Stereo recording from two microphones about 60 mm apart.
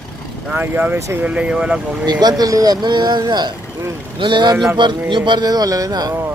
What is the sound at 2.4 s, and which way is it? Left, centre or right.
Speech, right.